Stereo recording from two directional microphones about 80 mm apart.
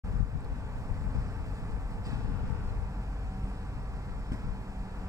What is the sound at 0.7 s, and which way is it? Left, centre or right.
Vehicle, right.